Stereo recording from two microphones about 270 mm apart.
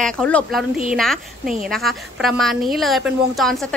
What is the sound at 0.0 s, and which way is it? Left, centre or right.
A woman's voice, centre.